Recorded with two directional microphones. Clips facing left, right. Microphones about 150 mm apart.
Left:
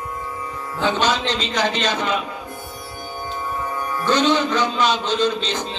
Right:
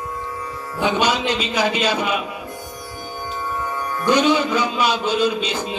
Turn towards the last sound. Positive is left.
turn(degrees=-10)  # may be behind; listen again after turning